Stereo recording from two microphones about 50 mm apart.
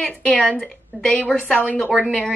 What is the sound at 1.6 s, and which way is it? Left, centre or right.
Speech, left.